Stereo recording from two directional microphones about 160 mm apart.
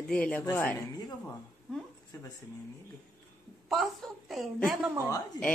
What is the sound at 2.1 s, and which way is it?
Speech, 20° left (ahead or behind).